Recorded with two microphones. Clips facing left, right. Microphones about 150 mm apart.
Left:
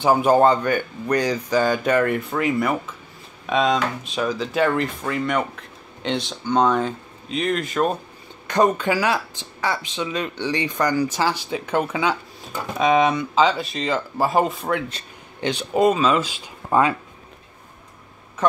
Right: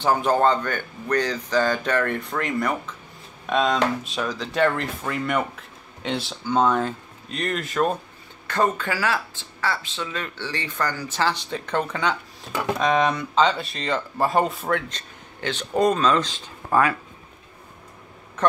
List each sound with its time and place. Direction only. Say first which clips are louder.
0.0 s speech: left 4 dB; 10° left (ahead or behind)
8.5 s speech: left 4 dB; 15° left (ahead or behind)